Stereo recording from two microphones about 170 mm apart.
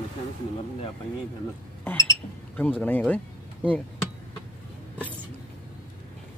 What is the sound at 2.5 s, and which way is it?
Speech, 10° left (ahead or behind).